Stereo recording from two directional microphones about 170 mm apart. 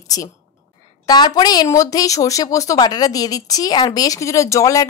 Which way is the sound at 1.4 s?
25° left (ahead or behind).